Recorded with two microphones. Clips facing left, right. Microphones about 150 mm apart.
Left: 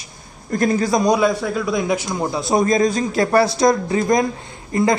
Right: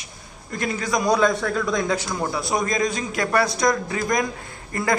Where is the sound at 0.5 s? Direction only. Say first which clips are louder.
Left 7 dB; 40° left (ahead or behind).